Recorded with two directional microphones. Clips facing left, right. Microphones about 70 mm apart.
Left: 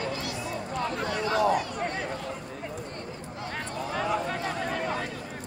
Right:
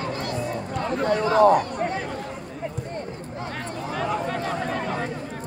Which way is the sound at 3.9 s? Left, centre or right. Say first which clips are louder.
Right 2 dB; centre.